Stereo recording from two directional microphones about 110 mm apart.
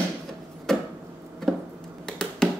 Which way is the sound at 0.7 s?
5° left (ahead or behind).